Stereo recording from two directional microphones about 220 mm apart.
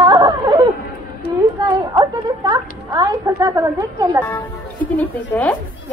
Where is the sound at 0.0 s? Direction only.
20° right (ahead or behind).